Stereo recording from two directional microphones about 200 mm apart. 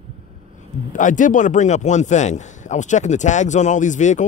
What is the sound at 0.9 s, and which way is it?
Speech, 40° left (ahead or behind).